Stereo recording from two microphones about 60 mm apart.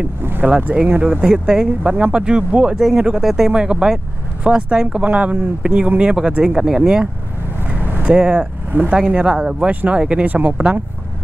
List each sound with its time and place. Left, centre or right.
0.2 s speech: right
0.8 s speech: right
1.8 s speech: right
2.7 s speech: centre
7.7 s vehicle: right
8.1 s speech: centre
9.7 s speech: right